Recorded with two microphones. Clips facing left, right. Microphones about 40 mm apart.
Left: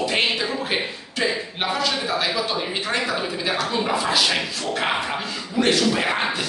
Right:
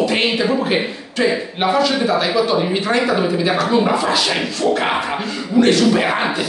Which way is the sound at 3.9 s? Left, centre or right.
Centre.